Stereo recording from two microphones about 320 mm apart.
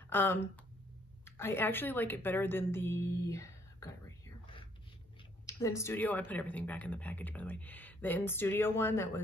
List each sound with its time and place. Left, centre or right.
0.1 s a woman's voice: centre
5.5 s speech: centre